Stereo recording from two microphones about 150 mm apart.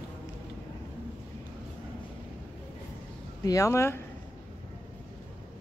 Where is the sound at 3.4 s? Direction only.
20° left (ahead or behind).